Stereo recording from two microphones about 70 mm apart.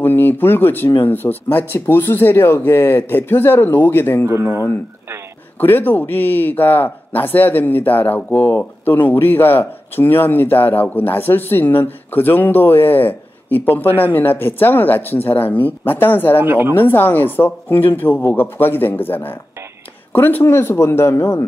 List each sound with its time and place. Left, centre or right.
0.0 s speech: left
4.3 s speech: right
5.6 s speech: left
16.4 s speech: right
16.7 s speech: left